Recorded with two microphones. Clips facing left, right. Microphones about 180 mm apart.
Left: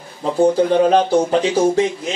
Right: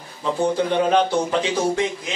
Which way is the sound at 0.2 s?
35° left (ahead or behind).